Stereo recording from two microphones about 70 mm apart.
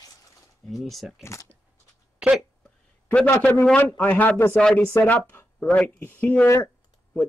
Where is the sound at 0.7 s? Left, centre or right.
Centre.